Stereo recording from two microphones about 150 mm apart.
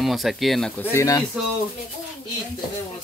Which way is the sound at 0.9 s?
25° left (ahead or behind).